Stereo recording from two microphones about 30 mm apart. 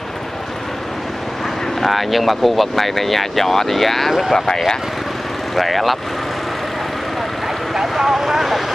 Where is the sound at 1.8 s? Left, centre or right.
Centre.